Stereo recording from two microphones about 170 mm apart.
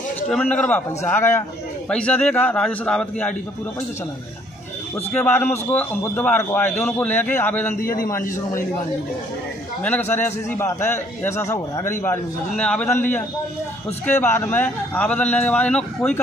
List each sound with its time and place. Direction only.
0.3 s a man's voice: 10° left (ahead or behind)
5.1 s a man's voice: 10° left (ahead or behind)
7.8 s a man's voice: 55° left (ahead or behind)
9.8 s a man's voice: 10° left (ahead or behind)